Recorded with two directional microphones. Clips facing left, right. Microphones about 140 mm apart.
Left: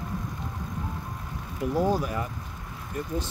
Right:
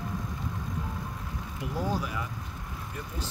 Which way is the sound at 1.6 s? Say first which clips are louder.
Left 7 dB; 40° left (ahead or behind).